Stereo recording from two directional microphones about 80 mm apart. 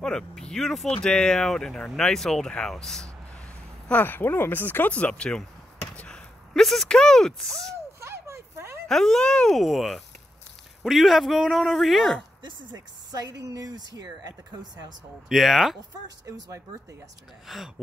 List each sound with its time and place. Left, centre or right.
0.0 s speech: centre
3.9 s speech: left; by 7.7 s centre
8.0 s a sound: right
8.8 s speech: centre
12.7 s speech: right
15.2 s speech: centre
16.3 s speech: right
17.5 s speech: centre